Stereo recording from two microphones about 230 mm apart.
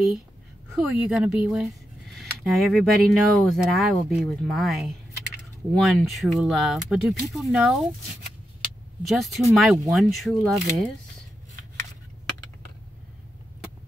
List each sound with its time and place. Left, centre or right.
0.7 s speech: centre
8.5 s a sound: centre
9.6 s speech: centre